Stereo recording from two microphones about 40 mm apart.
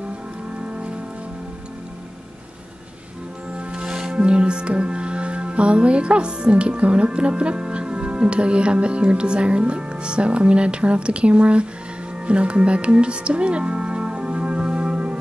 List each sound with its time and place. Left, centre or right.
0.7 s music: right
3.5 s speech: right
12.3 s music: right